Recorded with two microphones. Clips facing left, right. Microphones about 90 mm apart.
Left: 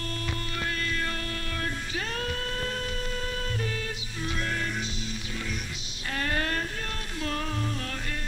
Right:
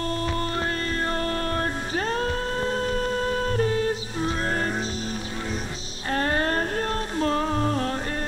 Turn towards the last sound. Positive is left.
turn(degrees=-40)  # may be behind; listen again after turning